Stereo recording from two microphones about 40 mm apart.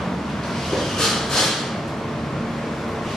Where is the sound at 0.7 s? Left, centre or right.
Centre.